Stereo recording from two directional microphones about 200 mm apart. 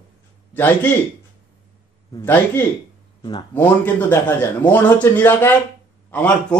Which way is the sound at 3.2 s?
20° left (ahead or behind).